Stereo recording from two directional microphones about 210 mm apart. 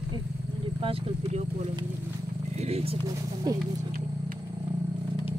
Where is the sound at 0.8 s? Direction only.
25° right (ahead or behind).